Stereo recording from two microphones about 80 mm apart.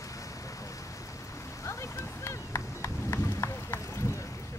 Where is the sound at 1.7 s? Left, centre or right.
Left.